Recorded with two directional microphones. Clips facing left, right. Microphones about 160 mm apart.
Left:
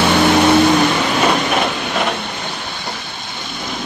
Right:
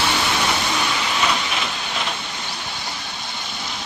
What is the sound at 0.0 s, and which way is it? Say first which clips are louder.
Vehicle: left 10 dB; 55° left (ahead or behind).